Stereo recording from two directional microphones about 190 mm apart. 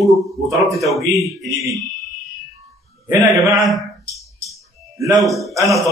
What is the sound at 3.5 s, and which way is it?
Speech, centre (ahead or behind).